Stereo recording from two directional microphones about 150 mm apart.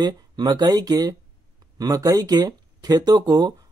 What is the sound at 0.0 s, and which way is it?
Speech, 30° right (ahead or behind).